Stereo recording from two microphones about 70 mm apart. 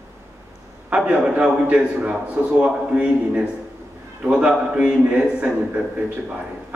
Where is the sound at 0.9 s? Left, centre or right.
Centre.